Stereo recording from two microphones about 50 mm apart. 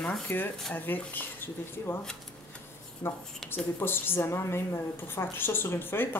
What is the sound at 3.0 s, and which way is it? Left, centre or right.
Speech, left.